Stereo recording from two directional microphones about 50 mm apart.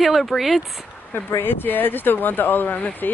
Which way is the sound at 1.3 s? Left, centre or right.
Left.